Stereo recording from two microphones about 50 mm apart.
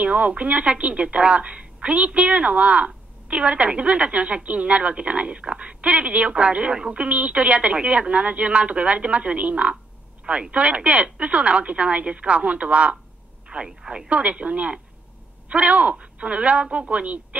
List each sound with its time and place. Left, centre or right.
0.0 s a woman's voice: right